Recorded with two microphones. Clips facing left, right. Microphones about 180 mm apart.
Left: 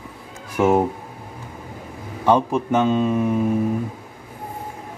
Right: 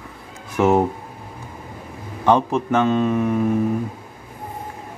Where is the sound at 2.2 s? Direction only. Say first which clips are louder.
Even; 10° left (ahead or behind).